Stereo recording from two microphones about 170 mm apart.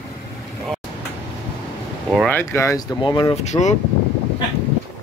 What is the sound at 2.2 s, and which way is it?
Speech, 15° left (ahead or behind).